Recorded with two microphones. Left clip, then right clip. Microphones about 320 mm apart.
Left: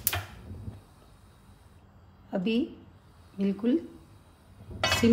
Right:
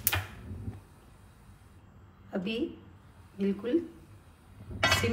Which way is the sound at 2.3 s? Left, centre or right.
Left.